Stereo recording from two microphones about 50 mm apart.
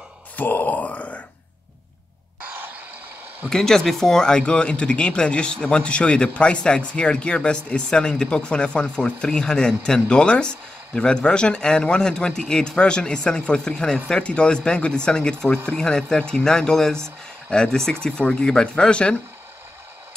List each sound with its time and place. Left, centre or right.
0.4 s speech: left
2.4 s a sound: right
3.4 s speech: centre